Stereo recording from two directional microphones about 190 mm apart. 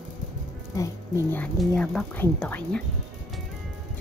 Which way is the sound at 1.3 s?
5° left (ahead or behind).